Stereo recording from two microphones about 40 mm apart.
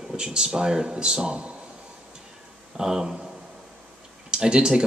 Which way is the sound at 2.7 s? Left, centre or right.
Centre.